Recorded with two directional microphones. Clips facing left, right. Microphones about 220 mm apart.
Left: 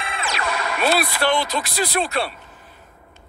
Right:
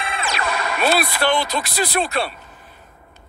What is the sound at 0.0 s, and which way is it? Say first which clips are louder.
Speech: right 2 dB; 50° right (ahead or behind).